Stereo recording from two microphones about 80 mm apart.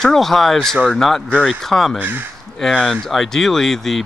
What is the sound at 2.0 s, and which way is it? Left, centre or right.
Speech, right.